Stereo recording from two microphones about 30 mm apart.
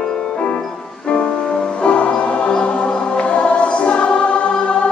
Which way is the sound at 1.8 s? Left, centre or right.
Left.